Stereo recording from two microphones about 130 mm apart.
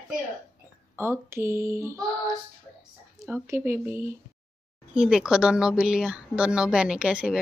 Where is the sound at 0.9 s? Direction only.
20° right (ahead or behind).